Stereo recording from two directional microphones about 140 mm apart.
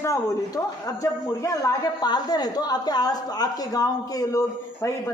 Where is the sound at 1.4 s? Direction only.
30° left (ahead or behind).